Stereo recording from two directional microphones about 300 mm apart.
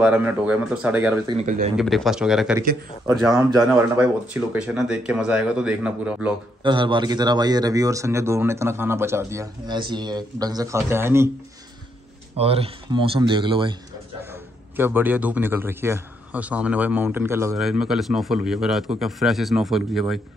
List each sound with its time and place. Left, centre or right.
0.0 s a man's voice: centre
1.4 s speech: right
1.8 s a man's voice: centre
3.4 s a man's voice: centre
6.6 s speech: centre
12.4 s a man's voice: centre